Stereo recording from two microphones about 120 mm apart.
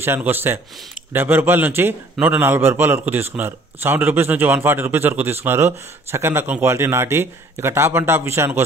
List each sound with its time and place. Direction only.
0.0 s a man's voice: 20° right (ahead or behind)